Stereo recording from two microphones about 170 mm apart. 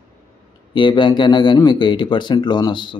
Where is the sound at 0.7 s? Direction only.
30° left (ahead or behind).